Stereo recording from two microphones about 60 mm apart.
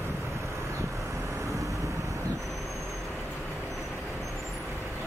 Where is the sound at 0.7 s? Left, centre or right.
Right.